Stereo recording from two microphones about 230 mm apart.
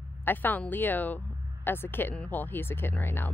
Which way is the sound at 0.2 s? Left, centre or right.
Centre.